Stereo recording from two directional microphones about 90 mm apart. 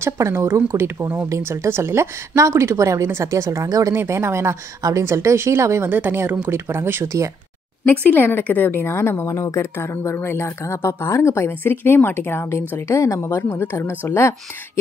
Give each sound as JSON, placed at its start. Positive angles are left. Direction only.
{"t": 0.0, "sound": "speech", "side_deg": -35}
{"t": 0.6, "sound": "speech", "side_deg": -25}
{"t": 3.9, "sound": "speech", "side_deg": -30}
{"t": 7.8, "sound": "speech", "side_deg": 20}